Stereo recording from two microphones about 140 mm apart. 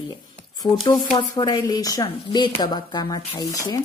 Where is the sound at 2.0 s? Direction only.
35° left (ahead or behind).